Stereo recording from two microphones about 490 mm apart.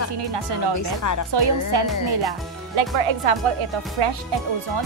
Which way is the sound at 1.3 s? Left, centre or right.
Right.